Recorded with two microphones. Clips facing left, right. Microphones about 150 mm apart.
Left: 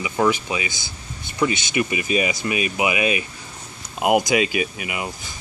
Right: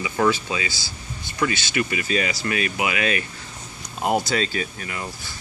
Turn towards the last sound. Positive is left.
turn(degrees=15)  # may be behind; listen again after turning